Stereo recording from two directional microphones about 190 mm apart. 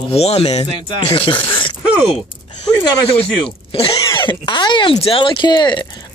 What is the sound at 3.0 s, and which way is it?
Speech, 30° left (ahead or behind).